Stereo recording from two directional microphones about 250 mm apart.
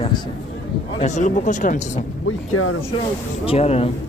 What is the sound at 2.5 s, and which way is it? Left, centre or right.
Speech, left.